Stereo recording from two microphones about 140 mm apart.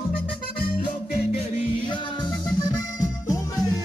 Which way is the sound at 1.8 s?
30° left (ahead or behind).